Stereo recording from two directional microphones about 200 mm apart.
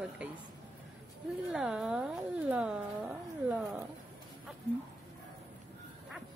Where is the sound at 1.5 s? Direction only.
Centre (ahead or behind).